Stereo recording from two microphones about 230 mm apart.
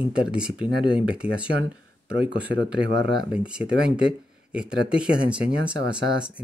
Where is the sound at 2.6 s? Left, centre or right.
Right.